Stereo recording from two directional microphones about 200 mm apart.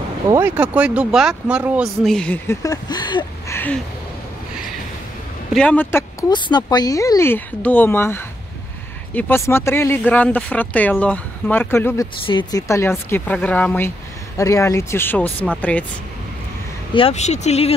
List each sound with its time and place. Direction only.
0.3 s speech: 10° right (ahead or behind); by 3.5 s 20° left (ahead or behind)
3.5 s speech: 10° left (ahead or behind)
5.5 s speech: 5° left (ahead or behind)
12.3 s speech: 20° left (ahead or behind)
16.9 s speech: 30° left (ahead or behind)